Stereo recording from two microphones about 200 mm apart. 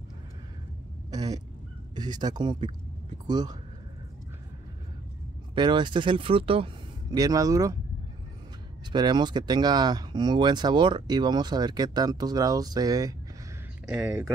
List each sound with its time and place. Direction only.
1.1 s a sound: 20° right (ahead or behind)
2.0 s speech: 20° right (ahead or behind)
5.5 s speech: 25° right (ahead or behind)
8.9 s speech: 20° right (ahead or behind)